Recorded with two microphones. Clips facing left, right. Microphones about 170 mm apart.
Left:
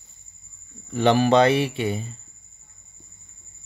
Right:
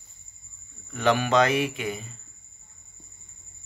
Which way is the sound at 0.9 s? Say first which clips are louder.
Left 4 dB; 35° left (ahead or behind).